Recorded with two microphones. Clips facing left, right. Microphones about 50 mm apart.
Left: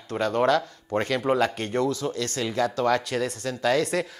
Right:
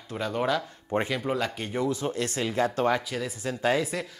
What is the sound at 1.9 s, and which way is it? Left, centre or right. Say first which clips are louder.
Speech: left 1 dB; right.